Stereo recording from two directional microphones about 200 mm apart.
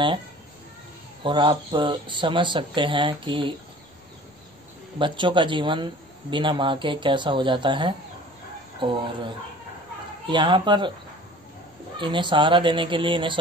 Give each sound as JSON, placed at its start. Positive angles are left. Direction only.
{"t": 1.2, "sound": "speech", "side_deg": -25}
{"t": 4.9, "sound": "speech", "side_deg": -25}
{"t": 10.2, "sound": "speech", "side_deg": -25}
{"t": 12.0, "sound": "speech", "side_deg": -25}